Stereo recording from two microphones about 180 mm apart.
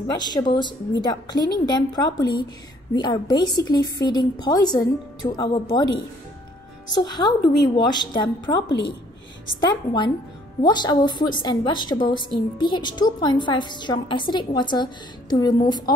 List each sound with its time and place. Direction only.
0.1 s a woman's voice: 25° left (ahead or behind)